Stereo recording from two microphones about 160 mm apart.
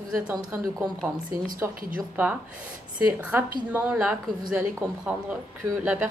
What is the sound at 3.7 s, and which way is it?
Speech, 10° right (ahead or behind).